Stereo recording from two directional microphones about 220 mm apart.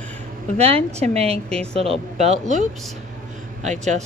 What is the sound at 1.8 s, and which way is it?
Speech, 30° right (ahead or behind).